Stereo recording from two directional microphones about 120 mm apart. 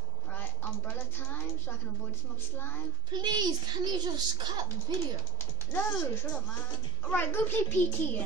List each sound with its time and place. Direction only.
0.3 s a woman's voice: 15° left (ahead or behind)
3.1 s a woman's voice: 35° right (ahead or behind)
5.4 s a child's voice: 15° left (ahead or behind)